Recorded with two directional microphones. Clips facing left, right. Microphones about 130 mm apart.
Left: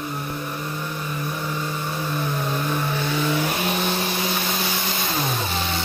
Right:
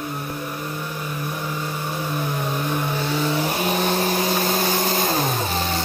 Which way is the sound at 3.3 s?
30° right (ahead or behind).